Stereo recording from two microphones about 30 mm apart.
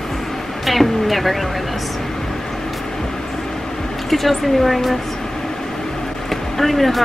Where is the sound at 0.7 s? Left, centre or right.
Centre.